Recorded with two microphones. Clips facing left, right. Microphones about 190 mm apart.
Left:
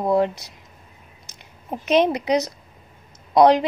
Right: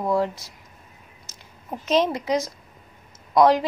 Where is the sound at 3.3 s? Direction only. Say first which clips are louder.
Left 3 dB; 20° left (ahead or behind).